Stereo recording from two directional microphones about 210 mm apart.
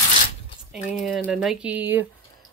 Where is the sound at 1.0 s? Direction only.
Centre (ahead or behind).